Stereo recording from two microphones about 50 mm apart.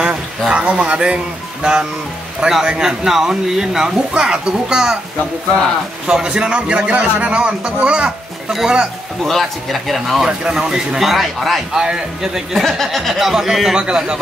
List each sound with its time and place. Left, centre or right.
0.5 s a man's voice: right
6.0 s a man's voice: centre
8.5 s speech: centre
12.5 s speech: centre
13.7 s speech: centre